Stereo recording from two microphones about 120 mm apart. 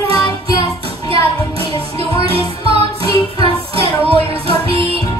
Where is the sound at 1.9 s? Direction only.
55° right (ahead or behind).